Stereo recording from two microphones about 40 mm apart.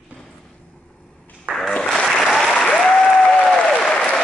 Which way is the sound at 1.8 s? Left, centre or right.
Centre.